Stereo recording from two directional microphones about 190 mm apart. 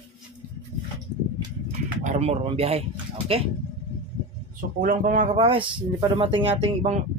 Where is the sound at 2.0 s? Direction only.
35° right (ahead or behind).